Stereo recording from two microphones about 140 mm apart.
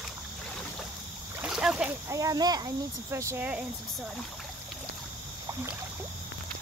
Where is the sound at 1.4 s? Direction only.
5° right (ahead or behind).